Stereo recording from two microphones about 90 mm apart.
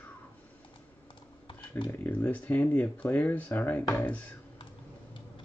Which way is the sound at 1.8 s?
20° left (ahead or behind).